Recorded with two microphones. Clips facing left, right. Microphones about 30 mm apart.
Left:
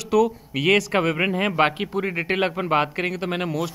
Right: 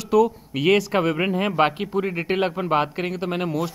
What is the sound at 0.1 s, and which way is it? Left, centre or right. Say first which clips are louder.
Speech: right 1 dB; centre.